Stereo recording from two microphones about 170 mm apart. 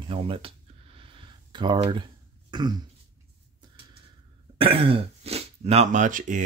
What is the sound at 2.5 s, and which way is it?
Throat clearing, 25° right (ahead or behind).